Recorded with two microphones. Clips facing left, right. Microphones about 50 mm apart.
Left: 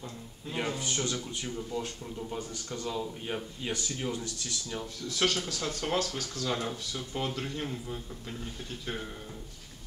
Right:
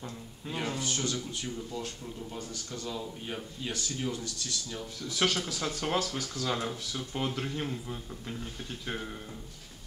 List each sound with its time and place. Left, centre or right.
0.6 s speech: centre
5.0 s speech: centre